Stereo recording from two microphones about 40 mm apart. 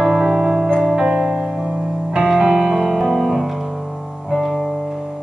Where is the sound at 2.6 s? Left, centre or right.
Centre.